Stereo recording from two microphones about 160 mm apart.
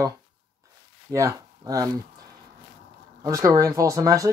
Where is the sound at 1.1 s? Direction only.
20° right (ahead or behind).